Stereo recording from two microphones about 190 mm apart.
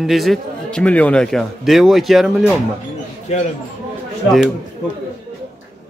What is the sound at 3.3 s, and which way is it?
Speech, 35° left (ahead or behind).